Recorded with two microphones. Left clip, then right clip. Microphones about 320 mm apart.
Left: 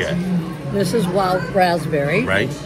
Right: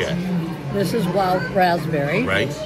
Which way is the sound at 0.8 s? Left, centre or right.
Centre.